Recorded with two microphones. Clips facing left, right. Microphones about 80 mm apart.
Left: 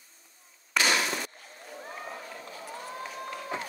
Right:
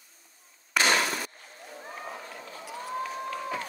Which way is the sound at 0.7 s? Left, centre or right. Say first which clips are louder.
Right 2 dB; right.